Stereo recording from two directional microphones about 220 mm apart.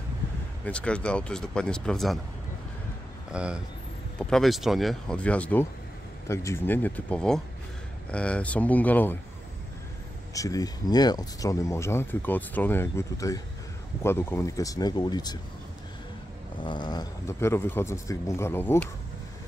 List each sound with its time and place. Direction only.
0.7 s speech: 5° left (ahead or behind)
3.3 s speech: 5° right (ahead or behind)
10.3 s speech: 15° left (ahead or behind)
16.5 s speech: 20° left (ahead or behind)